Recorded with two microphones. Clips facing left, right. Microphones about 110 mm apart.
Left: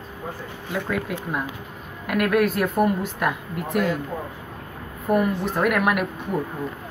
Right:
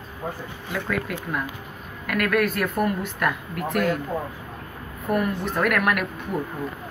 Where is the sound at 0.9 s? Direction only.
5° left (ahead or behind).